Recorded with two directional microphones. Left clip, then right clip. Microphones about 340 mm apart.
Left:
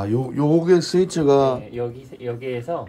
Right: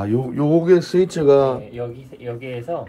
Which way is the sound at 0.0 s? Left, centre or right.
Centre.